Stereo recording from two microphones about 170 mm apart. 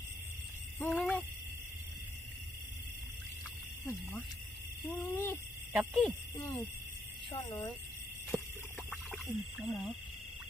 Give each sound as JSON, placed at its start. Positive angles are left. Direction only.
{"t": 0.7, "sound": "owl", "side_deg": 5}
{"t": 4.8, "sound": "owl", "side_deg": 15}
{"t": 5.7, "sound": "speech", "side_deg": -5}
{"t": 6.3, "sound": "owl", "side_deg": 15}
{"t": 9.1, "sound": "speech", "side_deg": 0}